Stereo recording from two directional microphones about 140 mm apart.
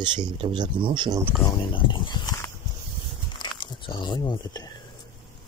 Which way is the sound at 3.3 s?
30° left (ahead or behind).